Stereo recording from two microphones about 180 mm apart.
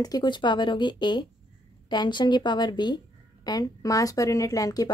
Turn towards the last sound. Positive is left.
turn(degrees=20)  # may be behind; listen again after turning